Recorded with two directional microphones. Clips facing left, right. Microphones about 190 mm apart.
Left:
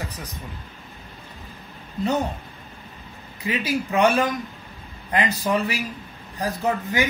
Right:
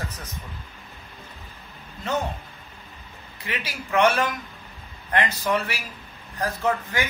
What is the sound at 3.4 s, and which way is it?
Speech, 15° left (ahead or behind).